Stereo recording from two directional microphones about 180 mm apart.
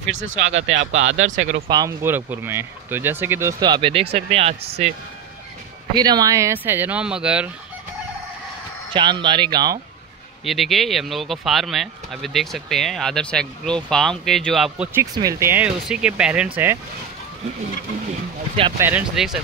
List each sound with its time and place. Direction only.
0.5 s speech: 90° right
1.7 s speech: 20° right (ahead or behind); by 4.9 s 35° right (ahead or behind)
5.9 s speech: 20° right (ahead or behind); by 7.5 s 5° right (ahead or behind)
8.9 s speech: 25° right (ahead or behind)
10.4 s speech: centre (ahead or behind)
15.0 s speech: 15° right (ahead or behind)
18.8 s speech: 10° right (ahead or behind)